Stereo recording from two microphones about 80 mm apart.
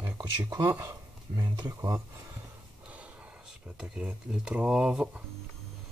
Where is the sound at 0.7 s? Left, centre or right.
Right.